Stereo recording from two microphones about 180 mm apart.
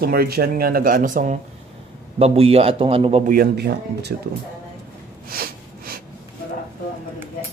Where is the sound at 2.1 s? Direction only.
35° right (ahead or behind).